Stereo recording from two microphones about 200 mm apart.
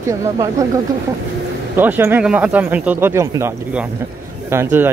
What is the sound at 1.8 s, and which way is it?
Speech, 10° right (ahead or behind).